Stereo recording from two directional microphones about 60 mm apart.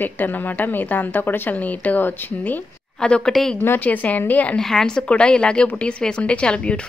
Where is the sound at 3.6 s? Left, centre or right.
Left.